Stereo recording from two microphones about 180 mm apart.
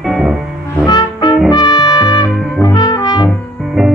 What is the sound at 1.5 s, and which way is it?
Trumpet, 25° left (ahead or behind).